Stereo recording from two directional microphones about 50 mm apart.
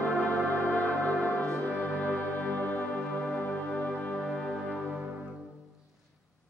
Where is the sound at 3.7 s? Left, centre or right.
Centre.